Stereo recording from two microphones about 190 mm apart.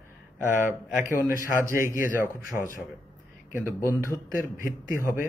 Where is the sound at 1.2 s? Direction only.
45° left (ahead or behind).